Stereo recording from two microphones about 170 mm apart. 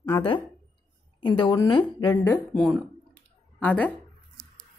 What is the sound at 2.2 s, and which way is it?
Speech, 5° left (ahead or behind).